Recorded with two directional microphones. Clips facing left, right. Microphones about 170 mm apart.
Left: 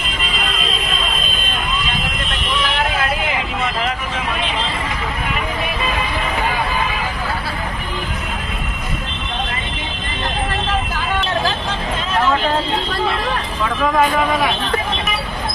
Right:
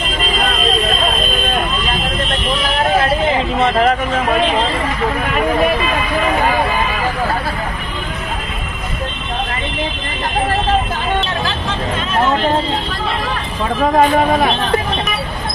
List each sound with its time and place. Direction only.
2.6 s vehicle: 30° right (ahead or behind)
3.8 s vehicle: 45° right (ahead or behind)
13.9 s a man's voice: 40° right (ahead or behind)